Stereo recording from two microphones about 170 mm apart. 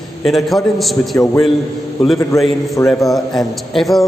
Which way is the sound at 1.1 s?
15° left (ahead or behind).